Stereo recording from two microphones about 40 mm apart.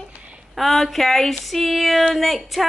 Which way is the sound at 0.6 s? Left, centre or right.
Centre.